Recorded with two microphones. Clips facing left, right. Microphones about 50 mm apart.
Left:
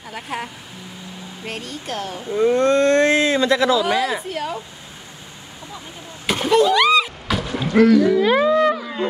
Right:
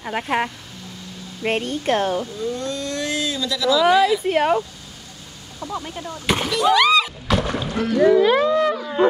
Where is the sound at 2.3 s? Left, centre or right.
Left.